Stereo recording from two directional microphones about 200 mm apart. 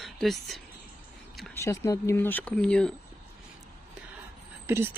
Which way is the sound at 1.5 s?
15° left (ahead or behind).